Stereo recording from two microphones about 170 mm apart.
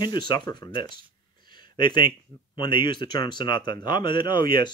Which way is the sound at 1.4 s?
25° left (ahead or behind).